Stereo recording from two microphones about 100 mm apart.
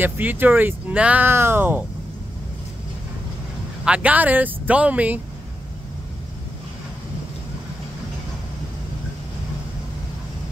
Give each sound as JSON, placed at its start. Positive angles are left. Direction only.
{"t": 0.0, "sound": "speech", "side_deg": -20}
{"t": 3.8, "sound": "speech", "side_deg": -10}